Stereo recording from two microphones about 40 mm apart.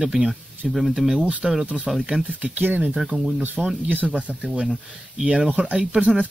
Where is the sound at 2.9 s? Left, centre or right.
Centre.